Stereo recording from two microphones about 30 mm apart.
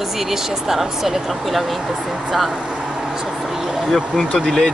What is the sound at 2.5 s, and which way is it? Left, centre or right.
Vehicle, right.